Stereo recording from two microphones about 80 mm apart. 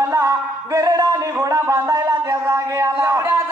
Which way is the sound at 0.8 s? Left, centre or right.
Right.